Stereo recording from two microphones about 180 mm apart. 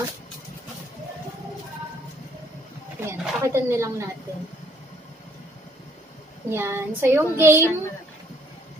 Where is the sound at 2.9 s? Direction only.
15° right (ahead or behind).